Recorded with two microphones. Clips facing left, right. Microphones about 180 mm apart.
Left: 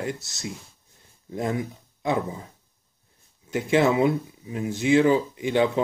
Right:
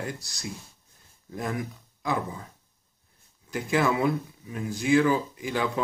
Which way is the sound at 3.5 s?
25° left (ahead or behind).